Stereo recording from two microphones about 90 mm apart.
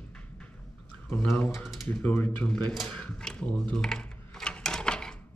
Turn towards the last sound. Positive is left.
turn(degrees=10)  # may be behind; listen again after turning